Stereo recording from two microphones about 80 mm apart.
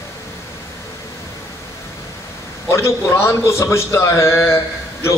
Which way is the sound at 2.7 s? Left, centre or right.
Left.